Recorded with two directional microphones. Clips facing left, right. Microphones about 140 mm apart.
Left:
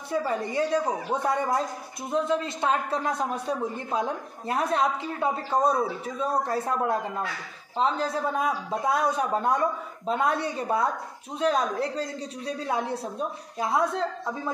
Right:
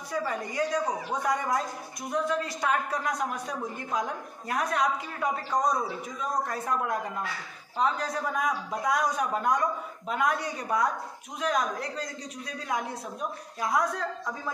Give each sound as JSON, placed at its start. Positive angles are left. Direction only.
{"t": 0.1, "sound": "a woman's voice", "side_deg": 30}